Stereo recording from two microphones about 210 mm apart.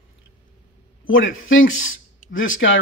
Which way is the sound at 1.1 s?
70° left (ahead or behind).